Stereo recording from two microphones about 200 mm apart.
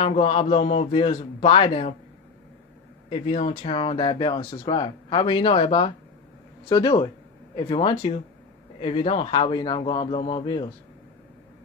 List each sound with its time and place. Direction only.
0.0 s speech: 30° left (ahead or behind)
3.1 s speech: 30° left (ahead or behind)